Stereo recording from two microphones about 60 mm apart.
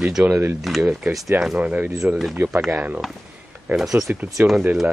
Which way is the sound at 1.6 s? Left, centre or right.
Right.